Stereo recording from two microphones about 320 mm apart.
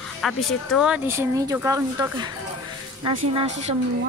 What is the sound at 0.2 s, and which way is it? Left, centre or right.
Speech, centre.